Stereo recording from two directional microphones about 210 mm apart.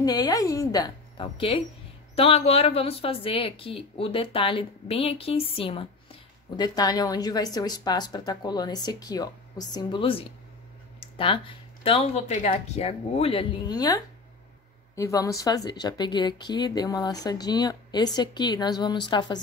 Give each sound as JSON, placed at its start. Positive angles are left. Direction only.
{"t": 0.0, "sound": "a woman's voice", "side_deg": 20}